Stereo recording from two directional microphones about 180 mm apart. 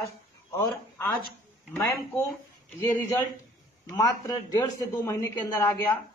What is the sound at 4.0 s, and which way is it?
A woman's voice, 20° left (ahead or behind).